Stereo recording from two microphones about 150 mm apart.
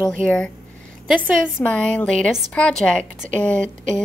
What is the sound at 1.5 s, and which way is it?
A woman's voice, 10° left (ahead or behind).